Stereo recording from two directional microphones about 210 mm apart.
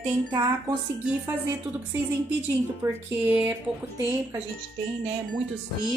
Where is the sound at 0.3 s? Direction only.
20° right (ahead or behind).